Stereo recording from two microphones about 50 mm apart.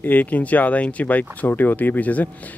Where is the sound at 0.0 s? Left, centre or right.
Left.